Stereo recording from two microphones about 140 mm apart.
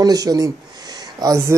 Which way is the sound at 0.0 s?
25° right (ahead or behind).